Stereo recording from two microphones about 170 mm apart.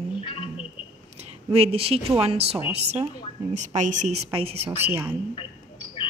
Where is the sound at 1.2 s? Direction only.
35° right (ahead or behind).